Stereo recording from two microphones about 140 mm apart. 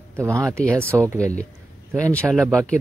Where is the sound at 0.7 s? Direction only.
20° right (ahead or behind).